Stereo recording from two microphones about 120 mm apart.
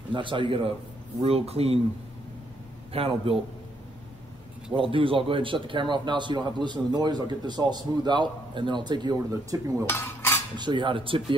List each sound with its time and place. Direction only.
0.1 s speech: 45° right (ahead or behind)
1.2 s speech: 60° right (ahead or behind)
2.9 s speech: 50° right (ahead or behind)
4.7 s a man's voice: 50° right (ahead or behind); by 9.8 s 30° right (ahead or behind)
9.8 s cutlery: 20° left (ahead or behind)
10.5 s speech: 40° right (ahead or behind)